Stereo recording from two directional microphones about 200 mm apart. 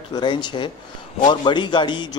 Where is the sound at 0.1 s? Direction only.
20° left (ahead or behind).